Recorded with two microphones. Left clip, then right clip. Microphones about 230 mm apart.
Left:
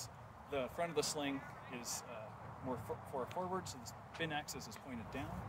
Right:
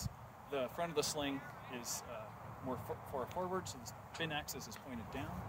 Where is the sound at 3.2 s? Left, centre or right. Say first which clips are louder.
Right 1 dB; centre.